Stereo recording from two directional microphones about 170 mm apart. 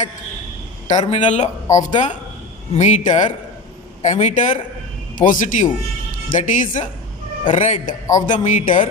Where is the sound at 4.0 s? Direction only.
45° left (ahead or behind).